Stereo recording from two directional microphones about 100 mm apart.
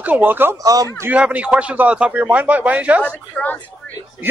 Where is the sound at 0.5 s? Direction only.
35° right (ahead or behind).